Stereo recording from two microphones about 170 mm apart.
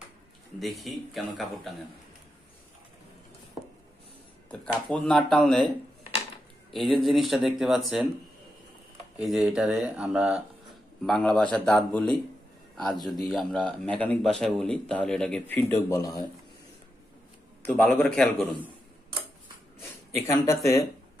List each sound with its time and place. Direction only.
0.6 s speech: centre (ahead or behind)
4.9 s speech: centre (ahead or behind)
6.7 s speech: centre (ahead or behind)
9.2 s speech: centre (ahead or behind)
15.7 s speech: 20° left (ahead or behind)
17.6 s speech: 10° left (ahead or behind)
20.2 s speech: 15° left (ahead or behind)